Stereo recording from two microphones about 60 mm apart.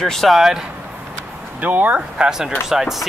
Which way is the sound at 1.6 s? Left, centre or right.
Right.